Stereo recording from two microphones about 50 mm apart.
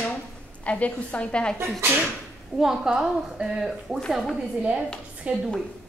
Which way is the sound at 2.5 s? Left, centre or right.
Centre.